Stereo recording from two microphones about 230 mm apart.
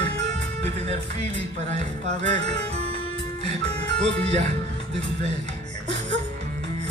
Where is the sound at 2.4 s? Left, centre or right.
Right.